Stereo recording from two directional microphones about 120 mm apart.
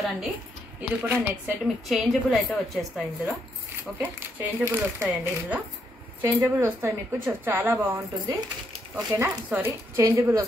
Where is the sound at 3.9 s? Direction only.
20° right (ahead or behind).